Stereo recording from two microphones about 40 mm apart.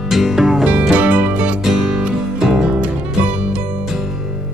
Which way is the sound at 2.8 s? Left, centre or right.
Right.